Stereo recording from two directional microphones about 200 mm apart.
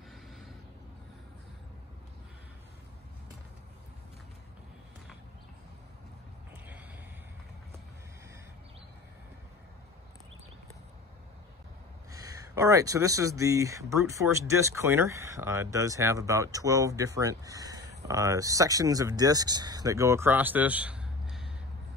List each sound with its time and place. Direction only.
12.1 s speech: 15° right (ahead or behind)